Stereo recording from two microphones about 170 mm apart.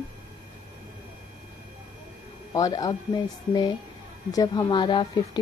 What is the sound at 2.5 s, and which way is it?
Speech, 20° left (ahead or behind).